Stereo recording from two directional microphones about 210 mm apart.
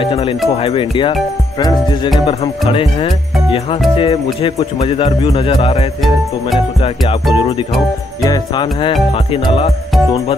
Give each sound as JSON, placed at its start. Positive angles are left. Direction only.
{"t": 0.0, "sound": "speech", "side_deg": 25}
{"t": 7.3, "sound": "speech", "side_deg": 25}